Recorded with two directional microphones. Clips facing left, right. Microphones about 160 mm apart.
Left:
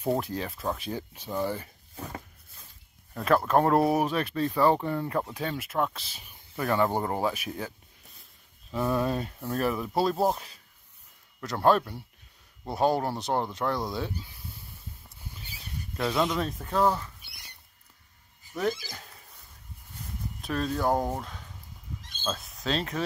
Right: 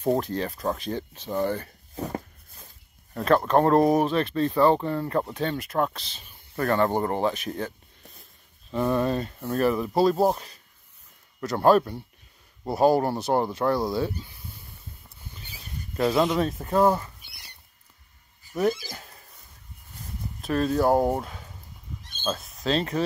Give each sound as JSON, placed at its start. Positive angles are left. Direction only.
{"t": 0.2, "sound": "speech", "side_deg": 5}
{"t": 2.0, "sound": "a sound", "side_deg": -35}
{"t": 3.2, "sound": "speech", "side_deg": 5}
{"t": 8.7, "sound": "speech", "side_deg": 5}
{"t": 16.0, "sound": "speech", "side_deg": -10}
{"t": 18.5, "sound": "speech", "side_deg": -10}
{"t": 20.4, "sound": "speech", "side_deg": 0}
{"t": 22.2, "sound": "speech", "side_deg": 0}